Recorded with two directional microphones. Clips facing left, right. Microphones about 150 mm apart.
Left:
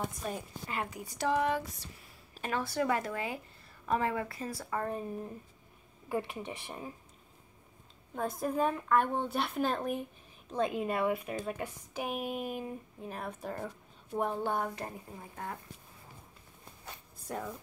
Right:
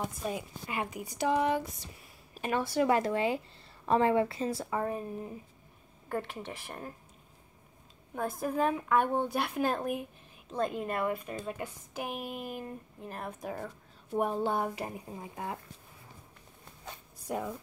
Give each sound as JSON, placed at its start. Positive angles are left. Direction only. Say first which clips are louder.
{"t": 0.3, "sound": "a woman's voice", "louder": "right 2 dB", "side_deg": -15}
{"t": 4.7, "sound": "a woman's voice", "louder": "right 2 dB", "side_deg": -5}
{"t": 8.1, "sound": "a woman's voice", "louder": "even", "side_deg": -5}
{"t": 17.3, "sound": "a woman's voice", "louder": "right 4 dB", "side_deg": -10}